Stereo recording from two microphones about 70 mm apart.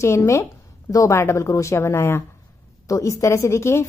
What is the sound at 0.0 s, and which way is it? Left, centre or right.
Speech, left.